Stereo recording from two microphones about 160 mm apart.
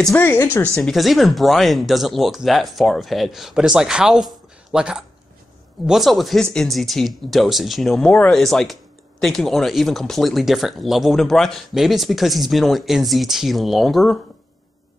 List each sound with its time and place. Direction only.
0.1 s speech: 15° left (ahead or behind)
0.7 s speech: centre (ahead or behind)